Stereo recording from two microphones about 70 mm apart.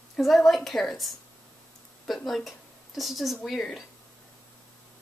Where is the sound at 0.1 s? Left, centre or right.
Centre.